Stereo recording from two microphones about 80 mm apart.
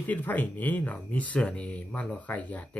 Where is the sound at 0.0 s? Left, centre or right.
Left.